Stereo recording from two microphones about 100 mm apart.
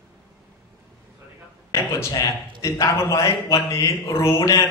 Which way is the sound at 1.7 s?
30° left (ahead or behind).